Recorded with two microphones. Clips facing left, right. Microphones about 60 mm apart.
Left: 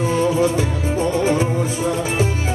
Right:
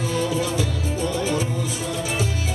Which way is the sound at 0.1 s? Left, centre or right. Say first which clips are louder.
Left 7 dB; left.